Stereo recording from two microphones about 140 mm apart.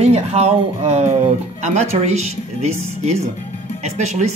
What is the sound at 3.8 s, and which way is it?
Speech, 55° right (ahead or behind).